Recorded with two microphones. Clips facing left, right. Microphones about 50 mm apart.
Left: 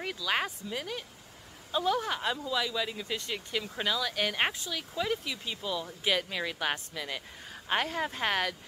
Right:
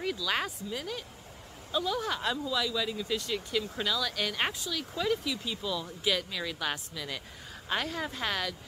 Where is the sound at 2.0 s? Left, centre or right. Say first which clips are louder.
Right 1 dB; left.